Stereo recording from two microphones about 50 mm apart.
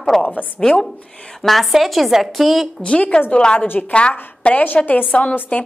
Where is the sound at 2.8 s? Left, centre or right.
Left.